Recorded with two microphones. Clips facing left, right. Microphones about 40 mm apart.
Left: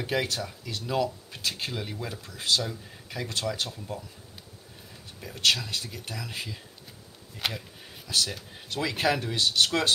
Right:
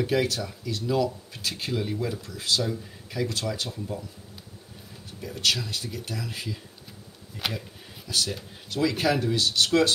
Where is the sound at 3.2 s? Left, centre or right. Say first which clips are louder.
Right 1 dB; left.